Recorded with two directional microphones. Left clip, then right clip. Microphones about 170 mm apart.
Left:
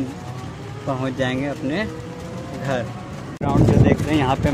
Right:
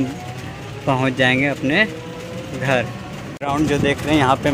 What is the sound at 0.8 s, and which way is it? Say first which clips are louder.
Speech: right 7 dB; 20° right (ahead or behind).